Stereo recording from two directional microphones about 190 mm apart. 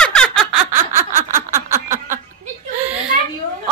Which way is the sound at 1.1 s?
40° right (ahead or behind).